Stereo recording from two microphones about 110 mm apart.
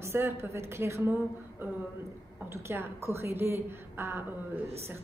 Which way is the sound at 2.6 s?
25° right (ahead or behind).